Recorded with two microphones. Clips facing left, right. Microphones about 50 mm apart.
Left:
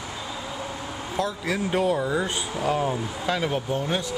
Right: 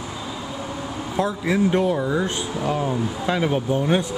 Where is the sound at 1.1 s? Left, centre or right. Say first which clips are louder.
Right 4 dB; centre.